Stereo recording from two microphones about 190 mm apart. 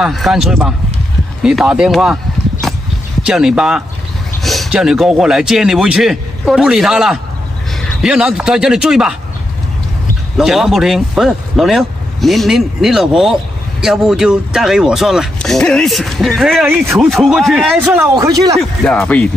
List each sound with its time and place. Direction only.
0.0 s speech: centre (ahead or behind)
3.3 s speech: 5° right (ahead or behind)
10.3 s speech: centre (ahead or behind)
16.6 s speech: 10° right (ahead or behind)
17.9 s speech: 15° right (ahead or behind)
18.6 s speech: 5° left (ahead or behind)